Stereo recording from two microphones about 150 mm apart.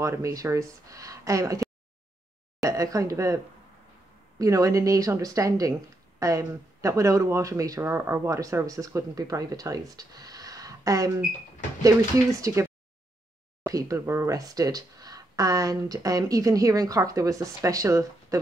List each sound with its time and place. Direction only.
0.0 s speech: 20° right (ahead or behind)
4.4 s speech: 20° right (ahead or behind)
12.4 s speech: 20° right (ahead or behind)
13.7 s speech: 20° right (ahead or behind)